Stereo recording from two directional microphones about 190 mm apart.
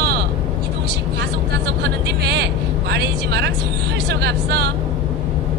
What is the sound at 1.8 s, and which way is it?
Vehicle, 60° right (ahead or behind).